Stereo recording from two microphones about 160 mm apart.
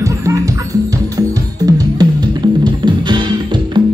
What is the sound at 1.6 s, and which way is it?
Music, 25° right (ahead or behind).